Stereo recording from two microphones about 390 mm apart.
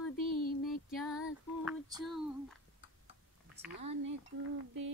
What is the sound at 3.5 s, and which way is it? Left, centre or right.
Speech, right.